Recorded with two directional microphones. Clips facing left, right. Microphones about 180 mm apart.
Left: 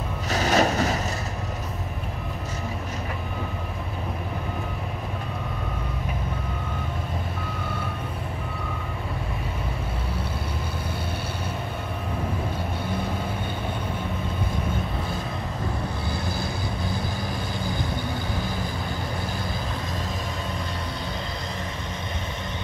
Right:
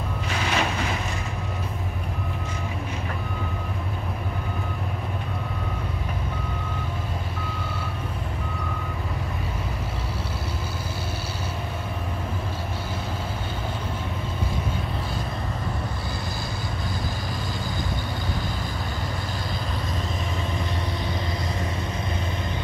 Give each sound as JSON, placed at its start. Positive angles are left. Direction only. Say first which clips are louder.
{"t": 0.3, "sound": "reversing beeps", "louder": "left 6 dB", "side_deg": 40}